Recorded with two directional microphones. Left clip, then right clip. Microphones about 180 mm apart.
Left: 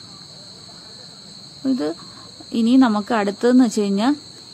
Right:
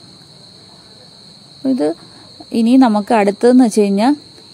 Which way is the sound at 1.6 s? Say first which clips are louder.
Right 6 dB; 20° right (ahead or behind).